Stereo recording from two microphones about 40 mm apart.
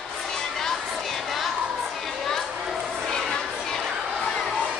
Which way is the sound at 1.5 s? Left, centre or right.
Right.